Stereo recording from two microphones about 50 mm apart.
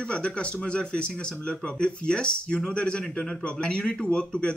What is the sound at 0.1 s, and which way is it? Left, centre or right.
Speech, left.